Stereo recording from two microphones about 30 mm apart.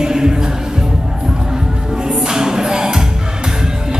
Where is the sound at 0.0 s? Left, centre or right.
Right.